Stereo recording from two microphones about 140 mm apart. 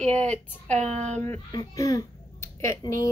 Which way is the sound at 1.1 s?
15° left (ahead or behind).